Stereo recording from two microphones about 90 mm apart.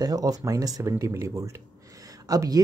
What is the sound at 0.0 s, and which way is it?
Speech, 40° right (ahead or behind).